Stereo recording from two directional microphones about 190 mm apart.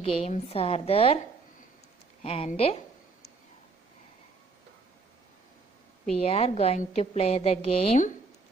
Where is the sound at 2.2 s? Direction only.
30° left (ahead or behind).